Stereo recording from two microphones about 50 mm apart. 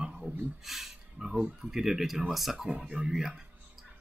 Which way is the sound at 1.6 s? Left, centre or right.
Centre.